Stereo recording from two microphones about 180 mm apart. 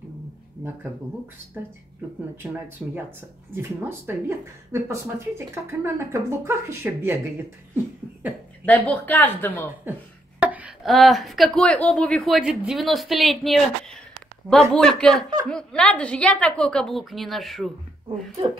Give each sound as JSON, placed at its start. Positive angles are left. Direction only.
{"t": 2.4, "sound": "speech", "side_deg": -10}
{"t": 8.6, "sound": "a woman's voice", "side_deg": 10}
{"t": 10.4, "sound": "speech", "side_deg": -5}
{"t": 18.0, "sound": "speech", "side_deg": -25}